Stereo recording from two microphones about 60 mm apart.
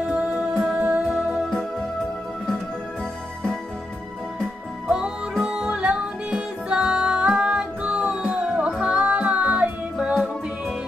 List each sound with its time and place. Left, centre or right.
0.7 s music: right
4.8 s music: centre